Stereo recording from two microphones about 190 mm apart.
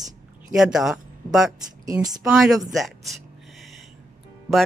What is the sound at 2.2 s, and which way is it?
Speech, centre (ahead or behind).